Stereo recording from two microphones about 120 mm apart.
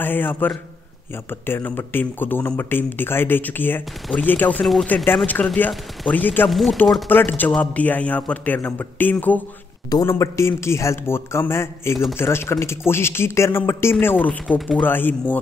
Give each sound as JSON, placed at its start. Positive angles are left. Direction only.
{"t": 0.0, "sound": "speech", "side_deg": 15}
{"t": 6.5, "sound": "speech", "side_deg": 0}
{"t": 7.1, "sound": "speech", "side_deg": 15}
{"t": 10.0, "sound": "a man's voice", "side_deg": 25}